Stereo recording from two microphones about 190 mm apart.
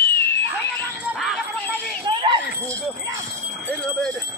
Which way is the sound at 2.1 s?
25° right (ahead or behind).